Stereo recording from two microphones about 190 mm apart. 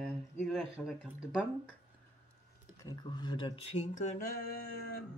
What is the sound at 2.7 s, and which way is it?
Speech, 20° left (ahead or behind).